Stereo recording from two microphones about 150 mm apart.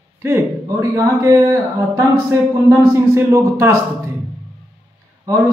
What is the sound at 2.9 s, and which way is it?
Speech, 20° right (ahead or behind).